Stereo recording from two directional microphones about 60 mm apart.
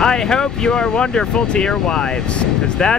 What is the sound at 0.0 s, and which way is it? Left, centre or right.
Speech, centre.